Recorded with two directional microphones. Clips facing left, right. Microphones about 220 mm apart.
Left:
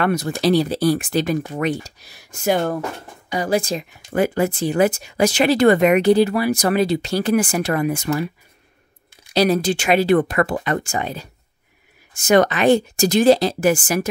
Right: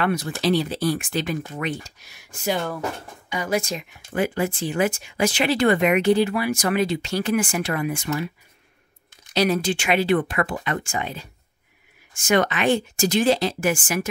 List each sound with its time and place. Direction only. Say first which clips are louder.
0.0 s speech: left 4 dB; 45° left (ahead or behind)
2.4 s speech: left 6 dB; 50° left (ahead or behind)
3.3 s speech: left 4 dB; 35° left (ahead or behind)
9.3 s speech: left 4 dB; 35° left (ahead or behind)